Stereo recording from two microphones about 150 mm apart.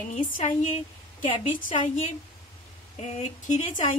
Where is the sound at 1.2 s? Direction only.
35° left (ahead or behind).